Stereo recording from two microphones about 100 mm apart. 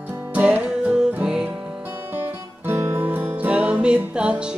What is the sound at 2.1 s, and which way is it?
Music, 25° right (ahead or behind).